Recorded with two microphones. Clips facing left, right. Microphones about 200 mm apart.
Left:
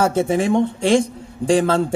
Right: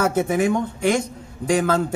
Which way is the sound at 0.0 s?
30° left (ahead or behind).